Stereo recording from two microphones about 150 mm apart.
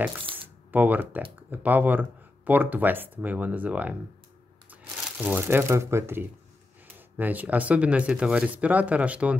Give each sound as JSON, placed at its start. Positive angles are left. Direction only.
{"t": 0.2, "sound": "camera", "side_deg": -35}
{"t": 0.7, "sound": "speech", "side_deg": -10}